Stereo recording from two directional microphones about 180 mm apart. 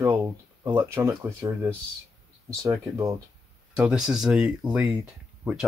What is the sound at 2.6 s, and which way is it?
Speech, 15° right (ahead or behind).